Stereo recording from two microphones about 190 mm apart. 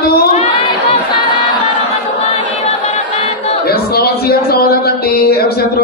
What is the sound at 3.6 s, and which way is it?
A man's voice, 55° left (ahead or behind).